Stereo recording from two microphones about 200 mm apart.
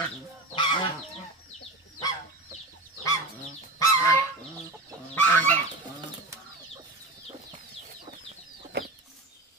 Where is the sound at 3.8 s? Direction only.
15° left (ahead or behind).